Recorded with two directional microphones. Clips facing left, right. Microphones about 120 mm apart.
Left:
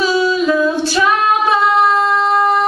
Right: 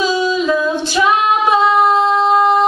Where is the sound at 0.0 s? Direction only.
15° right (ahead or behind).